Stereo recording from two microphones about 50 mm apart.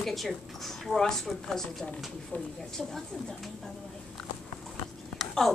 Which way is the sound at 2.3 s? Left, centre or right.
Left.